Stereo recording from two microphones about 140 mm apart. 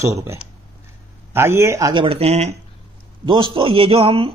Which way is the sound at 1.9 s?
40° right (ahead or behind).